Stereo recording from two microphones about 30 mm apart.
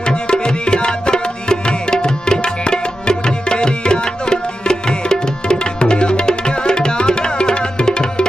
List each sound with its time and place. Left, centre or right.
0.0 s tabla: left